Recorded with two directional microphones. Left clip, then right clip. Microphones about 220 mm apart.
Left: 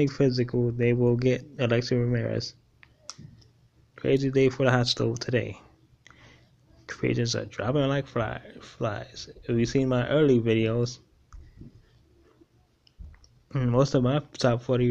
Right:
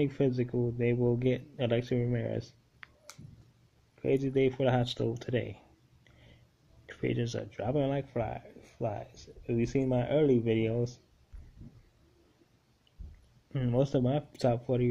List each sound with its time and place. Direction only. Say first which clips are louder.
0.6 s speech: left 5 dB; 15° left (ahead or behind)
3.9 s speech: left 5 dB; 15° left (ahead or behind)
6.9 s speech: left 6 dB; 10° left (ahead or behind)
13.5 s speech: left 6 dB; 10° left (ahead or behind)